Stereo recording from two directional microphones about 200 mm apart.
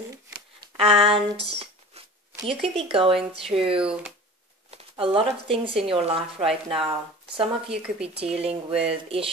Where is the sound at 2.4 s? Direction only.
30° right (ahead or behind).